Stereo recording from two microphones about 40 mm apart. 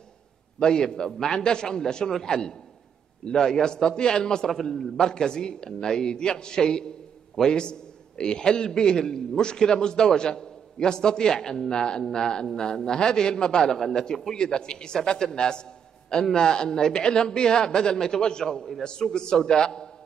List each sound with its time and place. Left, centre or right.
0.6 s a man's voice: centre
4.5 s a man's voice: centre
4.9 s a man's voice: centre